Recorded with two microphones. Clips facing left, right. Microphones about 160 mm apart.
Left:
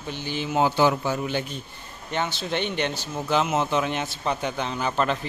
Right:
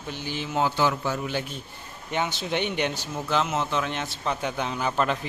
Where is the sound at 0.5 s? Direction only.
15° left (ahead or behind).